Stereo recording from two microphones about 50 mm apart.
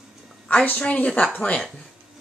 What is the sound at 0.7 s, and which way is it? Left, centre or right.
A woman's voice, left.